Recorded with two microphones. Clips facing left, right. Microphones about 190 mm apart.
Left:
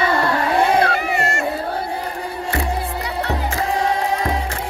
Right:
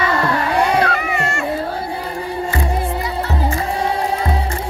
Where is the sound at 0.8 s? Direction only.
35° left (ahead or behind).